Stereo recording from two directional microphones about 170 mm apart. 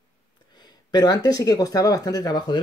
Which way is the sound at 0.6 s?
25° left (ahead or behind).